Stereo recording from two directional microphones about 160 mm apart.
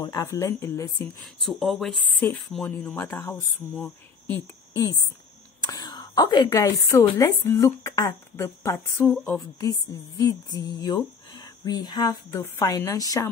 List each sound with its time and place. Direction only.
0.0 s a woman's voice: 20° left (ahead or behind)
1.2 s speech: centre (ahead or behind)
4.7 s a woman's voice: 20° left (ahead or behind)
9.6 s a woman's voice: 20° left (ahead or behind)